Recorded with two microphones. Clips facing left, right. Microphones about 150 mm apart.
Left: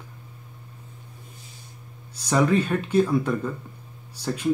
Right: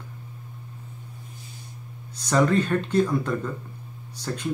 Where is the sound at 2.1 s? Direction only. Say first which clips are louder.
Even; 10° left (ahead or behind).